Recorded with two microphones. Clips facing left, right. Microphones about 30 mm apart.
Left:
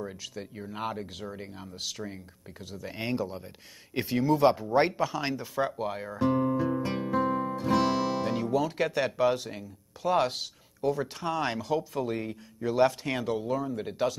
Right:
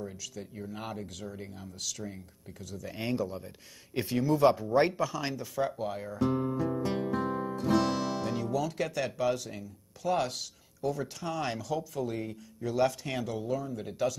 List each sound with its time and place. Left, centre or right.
0.0 s speech: left
5.8 s guitar: left
7.8 s music: left
8.1 s speech: left